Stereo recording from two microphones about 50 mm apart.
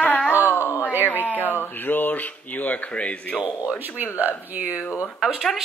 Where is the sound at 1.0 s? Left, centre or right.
Left.